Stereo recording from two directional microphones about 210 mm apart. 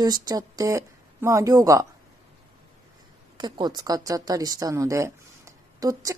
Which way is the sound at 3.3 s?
20° right (ahead or behind).